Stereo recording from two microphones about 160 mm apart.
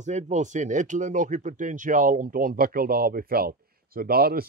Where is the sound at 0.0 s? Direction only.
50° right (ahead or behind).